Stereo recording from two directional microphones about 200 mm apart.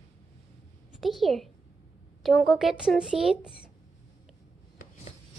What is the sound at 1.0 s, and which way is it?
A woman's voice, centre (ahead or behind).